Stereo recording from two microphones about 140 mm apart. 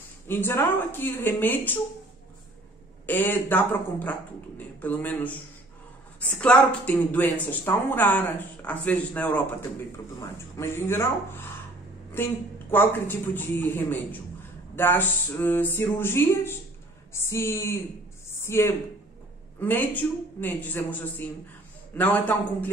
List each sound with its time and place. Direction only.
0.3 s speech: 15° left (ahead or behind)
3.1 s speech: 15° left (ahead or behind)
12.7 s speech: 15° left (ahead or behind)